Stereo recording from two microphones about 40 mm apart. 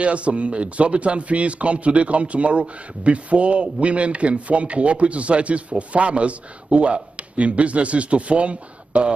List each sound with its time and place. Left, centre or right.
0.0 s speech: right